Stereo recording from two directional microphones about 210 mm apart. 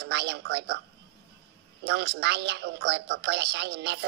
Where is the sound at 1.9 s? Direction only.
55° right (ahead or behind).